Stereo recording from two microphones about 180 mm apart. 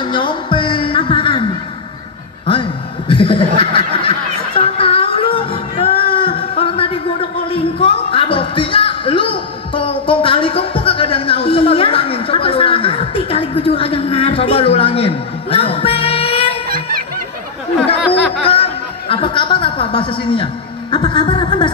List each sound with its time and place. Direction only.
0.0 s music: 25° left (ahead or behind)
3.1 s chuckle: 30° left (ahead or behind)
4.6 s music: 30° left (ahead or behind)
16.6 s music: 55° right (ahead or behind)
18.4 s chuckle: 30° left (ahead or behind)
20.9 s a sound: 25° left (ahead or behind)